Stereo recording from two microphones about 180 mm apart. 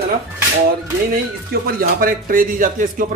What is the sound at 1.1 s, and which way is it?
Speech, 55° right (ahead or behind).